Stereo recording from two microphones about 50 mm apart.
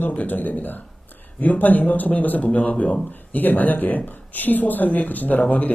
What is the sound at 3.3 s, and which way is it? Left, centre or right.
Speech, left.